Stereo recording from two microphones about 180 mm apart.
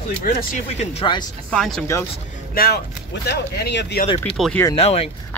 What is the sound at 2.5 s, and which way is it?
Speech, 55° left (ahead or behind).